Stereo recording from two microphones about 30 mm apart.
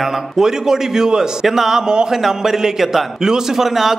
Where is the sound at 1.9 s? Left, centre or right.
Right.